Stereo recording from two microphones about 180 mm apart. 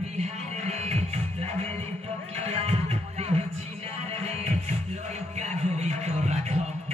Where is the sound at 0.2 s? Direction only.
40° right (ahead or behind).